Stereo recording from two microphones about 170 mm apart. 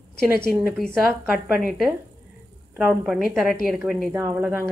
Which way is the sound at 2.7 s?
10° right (ahead or behind).